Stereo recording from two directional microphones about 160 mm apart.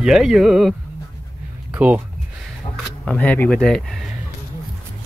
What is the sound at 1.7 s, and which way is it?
Speech, 10° right (ahead or behind).